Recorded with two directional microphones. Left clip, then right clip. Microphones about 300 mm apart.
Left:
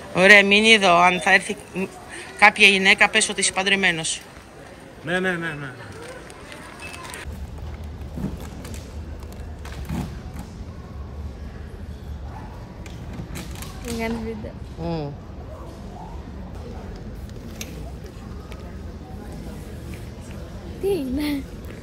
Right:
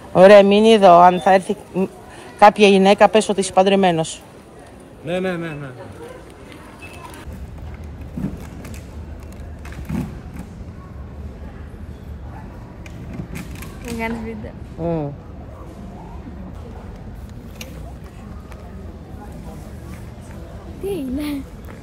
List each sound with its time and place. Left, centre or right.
0.1 s a woman's voice: centre
13.3 s a sound: left
13.9 s speech: centre
20.8 s speech: centre